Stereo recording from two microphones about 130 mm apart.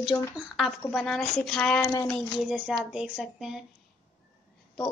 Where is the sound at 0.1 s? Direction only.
20° left (ahead or behind).